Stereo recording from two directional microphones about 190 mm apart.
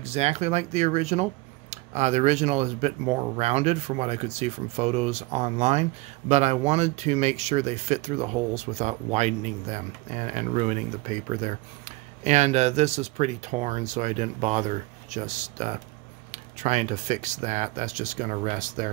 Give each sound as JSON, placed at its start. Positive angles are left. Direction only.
{"t": 0.0, "sound": "speech", "side_deg": -35}